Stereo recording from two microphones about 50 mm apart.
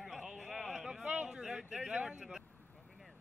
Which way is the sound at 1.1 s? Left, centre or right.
Centre.